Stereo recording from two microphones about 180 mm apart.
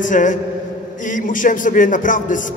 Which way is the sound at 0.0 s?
45° left (ahead or behind).